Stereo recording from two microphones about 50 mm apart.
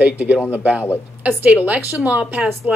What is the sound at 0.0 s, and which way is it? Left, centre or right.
A woman's voice, right.